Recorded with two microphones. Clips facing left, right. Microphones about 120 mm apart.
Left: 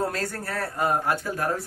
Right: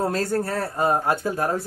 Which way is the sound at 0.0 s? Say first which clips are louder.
Right 5 dB; 25° right (ahead or behind).